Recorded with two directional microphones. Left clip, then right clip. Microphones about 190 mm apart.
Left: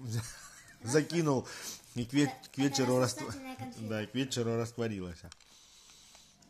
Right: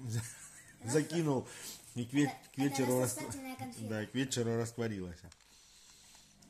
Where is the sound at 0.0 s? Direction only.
15° left (ahead or behind).